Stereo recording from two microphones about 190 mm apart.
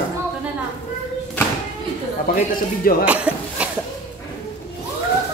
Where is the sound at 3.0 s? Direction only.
5° right (ahead or behind).